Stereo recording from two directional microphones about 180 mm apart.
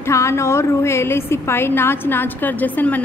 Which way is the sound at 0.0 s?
15° left (ahead or behind).